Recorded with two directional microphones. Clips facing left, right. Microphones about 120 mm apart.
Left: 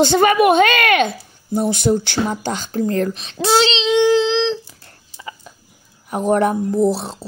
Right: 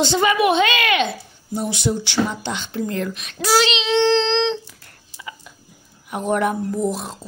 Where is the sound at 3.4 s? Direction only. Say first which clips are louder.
Left 3 dB; 30° left (ahead or behind).